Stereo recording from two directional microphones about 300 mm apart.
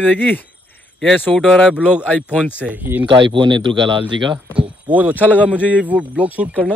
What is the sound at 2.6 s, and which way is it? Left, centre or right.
Speech, centre.